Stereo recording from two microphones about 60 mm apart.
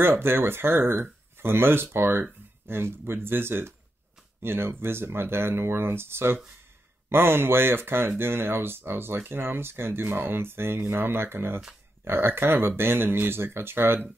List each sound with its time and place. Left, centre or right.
0.0 s speech: right